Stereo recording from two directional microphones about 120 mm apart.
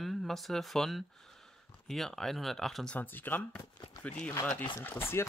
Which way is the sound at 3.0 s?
15° left (ahead or behind).